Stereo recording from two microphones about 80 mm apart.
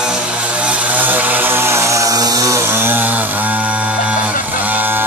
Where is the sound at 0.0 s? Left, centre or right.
Centre.